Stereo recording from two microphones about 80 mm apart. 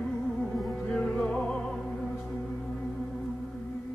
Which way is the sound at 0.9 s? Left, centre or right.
Centre.